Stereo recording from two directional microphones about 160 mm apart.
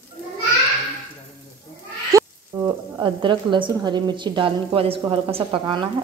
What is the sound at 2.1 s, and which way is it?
Frying, 25° right (ahead or behind).